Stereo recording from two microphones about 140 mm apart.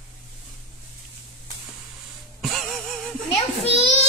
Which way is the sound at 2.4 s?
Centre (ahead or behind).